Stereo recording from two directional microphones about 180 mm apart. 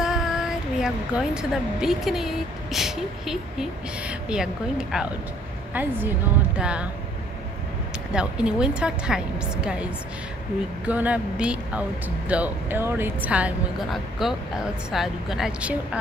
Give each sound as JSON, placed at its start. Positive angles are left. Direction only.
{"t": 0.0, "sound": "speech", "side_deg": -5}
{"t": 8.1, "sound": "speech", "side_deg": -5}